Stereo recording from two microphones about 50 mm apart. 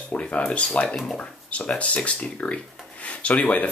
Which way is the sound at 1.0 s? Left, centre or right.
Left.